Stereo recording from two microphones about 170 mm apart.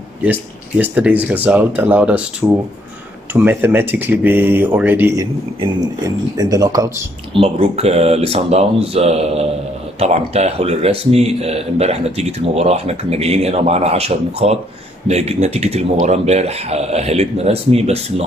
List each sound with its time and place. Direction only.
0.2 s speech: 10° right (ahead or behind)
3.3 s speech: 10° right (ahead or behind)
7.3 s speech: 35° right (ahead or behind)